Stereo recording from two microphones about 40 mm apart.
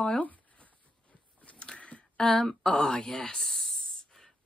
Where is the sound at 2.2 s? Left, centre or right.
Centre.